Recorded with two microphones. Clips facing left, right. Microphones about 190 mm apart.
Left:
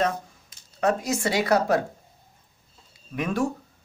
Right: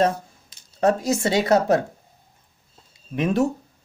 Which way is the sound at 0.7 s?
30° right (ahead or behind).